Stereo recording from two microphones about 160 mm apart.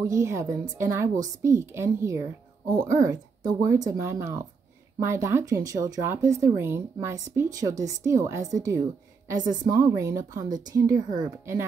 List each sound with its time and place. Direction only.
0.0 s a woman's voice: 20° right (ahead or behind)